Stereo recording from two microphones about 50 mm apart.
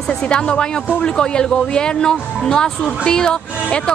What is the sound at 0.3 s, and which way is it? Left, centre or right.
A woman's voice, centre.